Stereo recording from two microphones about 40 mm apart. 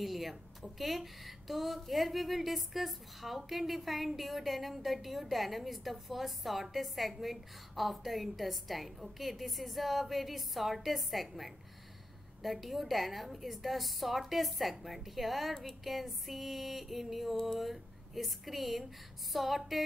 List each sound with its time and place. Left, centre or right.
0.0 s a woman's voice: centre